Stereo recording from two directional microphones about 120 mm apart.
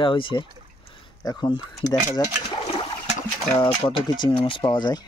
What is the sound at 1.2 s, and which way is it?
Speech, 35° left (ahead or behind).